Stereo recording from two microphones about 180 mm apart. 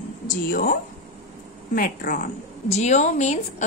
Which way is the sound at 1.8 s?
50° left (ahead or behind).